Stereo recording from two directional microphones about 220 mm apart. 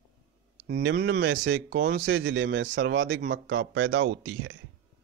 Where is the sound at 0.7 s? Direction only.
45° right (ahead or behind); by 4.6 s 60° right (ahead or behind).